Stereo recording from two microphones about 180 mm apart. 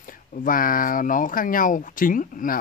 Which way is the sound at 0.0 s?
50° left (ahead or behind).